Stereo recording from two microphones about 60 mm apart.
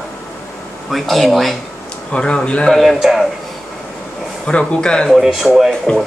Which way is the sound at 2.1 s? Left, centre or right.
Centre.